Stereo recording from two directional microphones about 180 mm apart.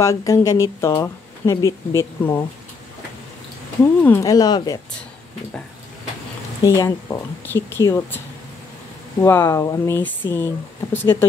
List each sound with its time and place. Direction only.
0.0 s speech: 15° left (ahead or behind)
4.0 s speech: 15° left (ahead or behind)
6.6 s speech: 15° left (ahead or behind)
9.2 s speech: 15° left (ahead or behind)